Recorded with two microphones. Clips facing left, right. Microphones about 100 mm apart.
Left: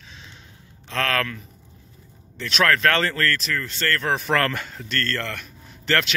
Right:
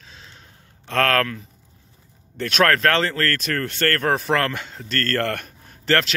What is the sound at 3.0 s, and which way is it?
Speech, 25° right (ahead or behind).